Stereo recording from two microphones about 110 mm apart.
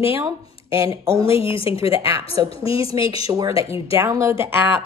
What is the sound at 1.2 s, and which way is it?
A woman's voice, 55° left (ahead or behind).